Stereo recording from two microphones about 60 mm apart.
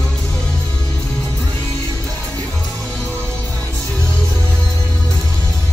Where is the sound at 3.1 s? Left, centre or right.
Centre.